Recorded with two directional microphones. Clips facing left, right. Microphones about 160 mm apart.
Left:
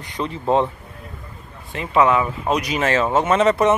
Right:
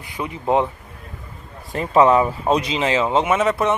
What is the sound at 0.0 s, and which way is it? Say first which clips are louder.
Speech: left 1 dB; 10° right (ahead or behind).